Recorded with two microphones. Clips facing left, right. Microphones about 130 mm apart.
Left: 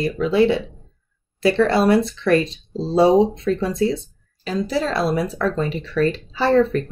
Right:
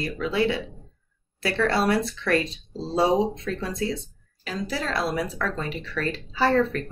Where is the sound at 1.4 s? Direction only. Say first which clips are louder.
Left 7 dB; 25° left (ahead or behind).